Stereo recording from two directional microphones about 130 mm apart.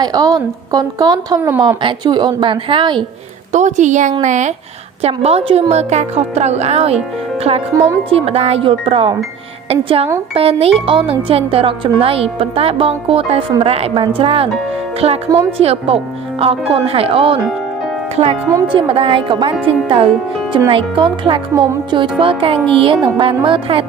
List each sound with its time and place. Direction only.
0.0 s a woman's voice: 30° right (ahead or behind)
3.5 s a woman's voice: 65° right (ahead or behind)
5.0 s a woman's voice: 50° right (ahead or behind)
7.7 s a woman's voice: 25° right (ahead or behind)
8.1 s speech: 50° right (ahead or behind)
18.7 s speech: 40° right (ahead or behind)